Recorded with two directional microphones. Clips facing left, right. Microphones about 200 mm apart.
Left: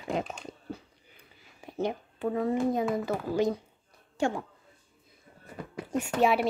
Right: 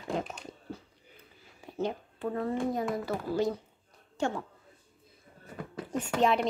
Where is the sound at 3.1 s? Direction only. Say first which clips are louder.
Left 2 dB; 20° left (ahead or behind).